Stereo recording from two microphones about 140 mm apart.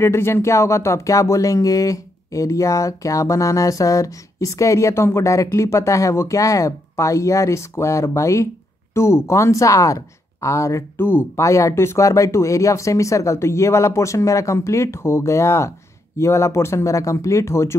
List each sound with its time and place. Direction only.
0.0 s speech: 20° left (ahead or behind)